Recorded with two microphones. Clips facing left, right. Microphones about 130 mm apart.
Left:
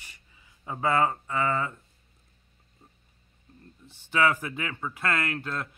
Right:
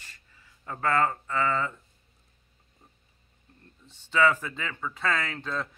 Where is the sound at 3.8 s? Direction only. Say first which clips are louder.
Right 1 dB; 10° left (ahead or behind).